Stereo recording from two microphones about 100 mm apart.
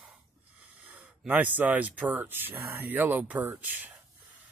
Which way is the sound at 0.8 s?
15° right (ahead or behind).